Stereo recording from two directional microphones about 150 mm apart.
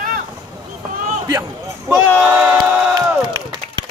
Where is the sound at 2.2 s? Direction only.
5° right (ahead or behind).